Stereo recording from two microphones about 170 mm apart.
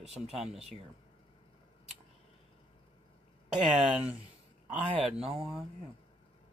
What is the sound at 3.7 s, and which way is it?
Speech, 5° right (ahead or behind).